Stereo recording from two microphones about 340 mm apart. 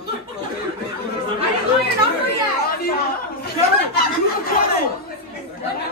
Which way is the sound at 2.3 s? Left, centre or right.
Left.